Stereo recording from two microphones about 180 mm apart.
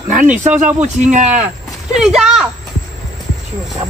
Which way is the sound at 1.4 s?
5° right (ahead or behind).